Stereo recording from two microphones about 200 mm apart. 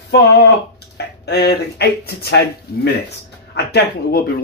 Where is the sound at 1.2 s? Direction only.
55° left (ahead or behind).